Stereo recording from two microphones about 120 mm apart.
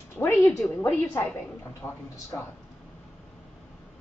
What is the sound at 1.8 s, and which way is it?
Speech, 20° left (ahead or behind).